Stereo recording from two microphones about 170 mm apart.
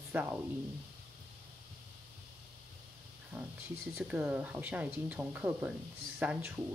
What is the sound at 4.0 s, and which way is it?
A woman's voice, 10° right (ahead or behind).